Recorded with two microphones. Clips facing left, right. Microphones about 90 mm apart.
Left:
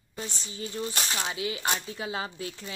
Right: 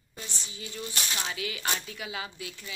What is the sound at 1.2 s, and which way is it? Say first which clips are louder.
Coin: left 3 dB; 25° left (ahead or behind).